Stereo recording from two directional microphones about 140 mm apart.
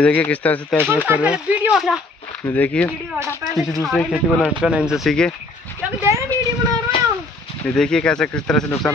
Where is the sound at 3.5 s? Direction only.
Centre (ahead or behind).